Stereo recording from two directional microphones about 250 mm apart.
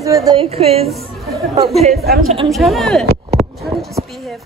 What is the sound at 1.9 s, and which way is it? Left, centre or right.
Speech, right.